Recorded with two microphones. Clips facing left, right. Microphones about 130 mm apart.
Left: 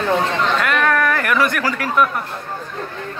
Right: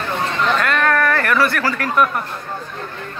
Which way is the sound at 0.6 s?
10° left (ahead or behind).